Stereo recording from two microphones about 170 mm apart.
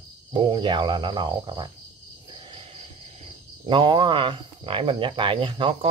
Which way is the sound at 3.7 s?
30° right (ahead or behind).